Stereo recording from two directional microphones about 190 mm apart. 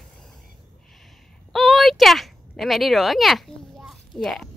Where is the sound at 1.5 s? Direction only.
Centre (ahead or behind).